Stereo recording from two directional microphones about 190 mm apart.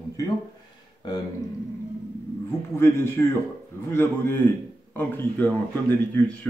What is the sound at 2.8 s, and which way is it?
A man's voice, 15° left (ahead or behind).